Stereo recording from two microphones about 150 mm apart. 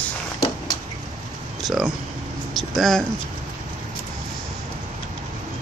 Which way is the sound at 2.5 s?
Centre (ahead or behind).